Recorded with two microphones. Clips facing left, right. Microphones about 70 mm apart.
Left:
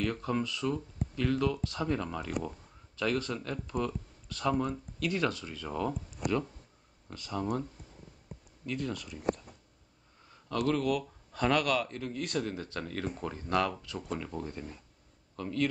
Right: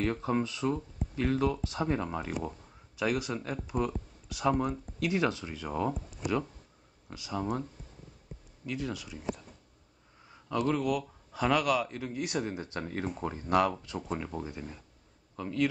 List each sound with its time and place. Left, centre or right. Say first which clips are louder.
0.0 s speech: right 2 dB; right
7.1 s speech: even; centre
8.6 s speech: even; centre
10.7 s speech: left 2 dB; centre
14.3 s speech: right 1 dB; centre